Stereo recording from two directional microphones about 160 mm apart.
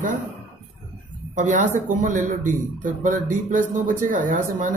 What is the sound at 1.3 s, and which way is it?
Speech, 50° right (ahead or behind).